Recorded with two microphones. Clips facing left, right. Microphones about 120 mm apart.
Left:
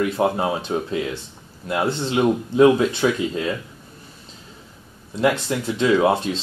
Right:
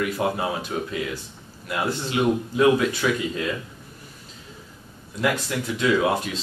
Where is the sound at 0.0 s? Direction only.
30° left (ahead or behind).